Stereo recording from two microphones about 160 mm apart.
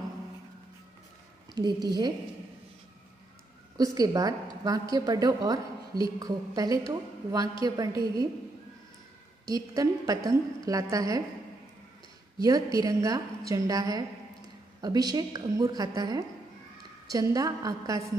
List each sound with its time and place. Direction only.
1.5 s a woman's voice: 25° right (ahead or behind)
3.7 s a woman's voice: 25° right (ahead or behind)
9.5 s a woman's voice: 20° right (ahead or behind)
12.4 s a woman's voice: 25° right (ahead or behind)